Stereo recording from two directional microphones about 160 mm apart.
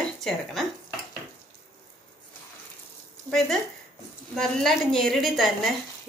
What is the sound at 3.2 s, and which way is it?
A woman's voice, centre (ahead or behind).